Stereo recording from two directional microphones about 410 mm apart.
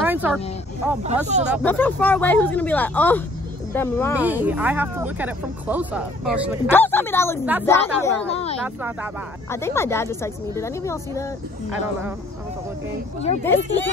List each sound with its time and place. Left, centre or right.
0.0 s a sound: centre
1.1 s a woman's voice: centre
8.6 s speech: centre
9.5 s a woman's voice: centre
13.2 s a woman's voice: centre